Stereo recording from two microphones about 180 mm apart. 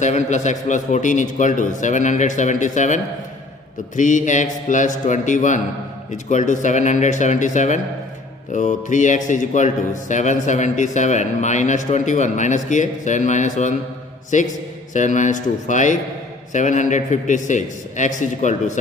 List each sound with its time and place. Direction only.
0.0 s a man's voice: 40° left (ahead or behind)